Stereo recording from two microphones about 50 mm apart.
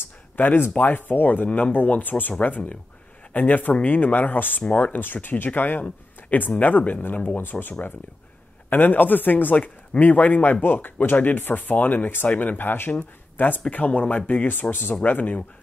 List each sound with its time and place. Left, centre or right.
0.4 s speech: left
13.7 s speech: left